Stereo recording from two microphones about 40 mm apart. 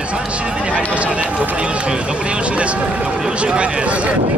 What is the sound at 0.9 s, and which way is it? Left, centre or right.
Speech, right.